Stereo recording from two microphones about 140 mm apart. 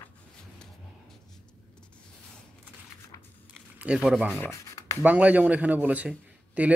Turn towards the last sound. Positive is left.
turn(degrees=-10)  # may be behind; listen again after turning